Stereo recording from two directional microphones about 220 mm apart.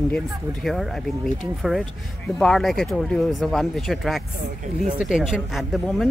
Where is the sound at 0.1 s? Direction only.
Centre (ahead or behind).